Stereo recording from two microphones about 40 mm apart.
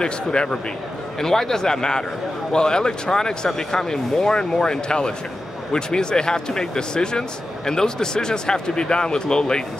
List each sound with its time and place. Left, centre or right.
0.0 s speech: left
1.2 s speech: centre